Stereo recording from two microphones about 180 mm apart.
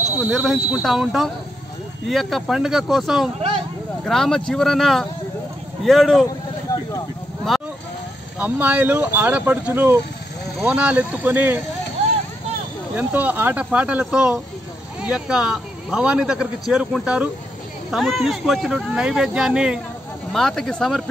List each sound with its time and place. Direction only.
0.2 s a man's voice: 5° right (ahead or behind)
3.3 s vehicle: 30° right (ahead or behind)
4.0 s a man's voice: centre (ahead or behind)
8.4 s speech: 10° right (ahead or behind)
12.9 s a man's voice: 10° right (ahead or behind)